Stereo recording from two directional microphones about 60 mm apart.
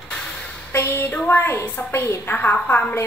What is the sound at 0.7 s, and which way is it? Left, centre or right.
A woman's voice, left.